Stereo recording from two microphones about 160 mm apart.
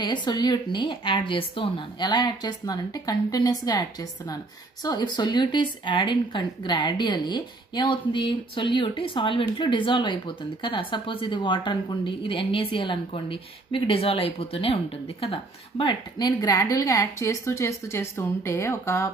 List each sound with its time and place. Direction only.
0.0 s a woman's voice: 30° left (ahead or behind)